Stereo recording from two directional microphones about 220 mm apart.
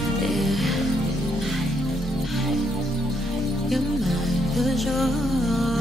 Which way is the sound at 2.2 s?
Centre (ahead or behind).